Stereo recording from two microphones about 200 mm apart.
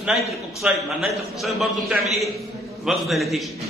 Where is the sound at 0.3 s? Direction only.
Centre (ahead or behind).